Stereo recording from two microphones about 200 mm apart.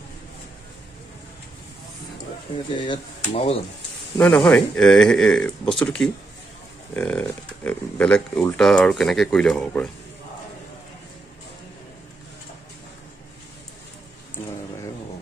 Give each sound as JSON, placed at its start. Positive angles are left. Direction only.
{"t": 2.7, "sound": "speech", "side_deg": 25}
{"t": 4.2, "sound": "speech", "side_deg": 5}